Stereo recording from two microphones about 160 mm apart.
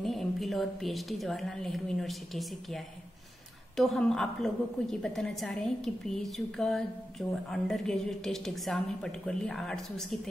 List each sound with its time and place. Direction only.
0.0 s a woman's voice: centre (ahead or behind)